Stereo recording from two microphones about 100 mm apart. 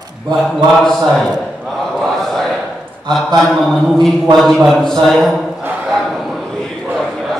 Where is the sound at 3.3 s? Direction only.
5° left (ahead or behind).